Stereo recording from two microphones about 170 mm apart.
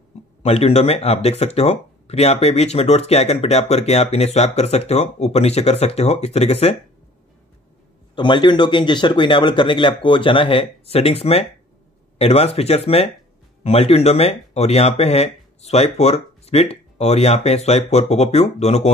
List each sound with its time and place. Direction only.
0.4 s speech: 35° left (ahead or behind)
8.2 s speech: 25° left (ahead or behind)